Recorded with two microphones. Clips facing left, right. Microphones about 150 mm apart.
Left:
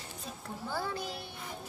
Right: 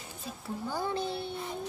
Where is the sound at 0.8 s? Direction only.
25° right (ahead or behind).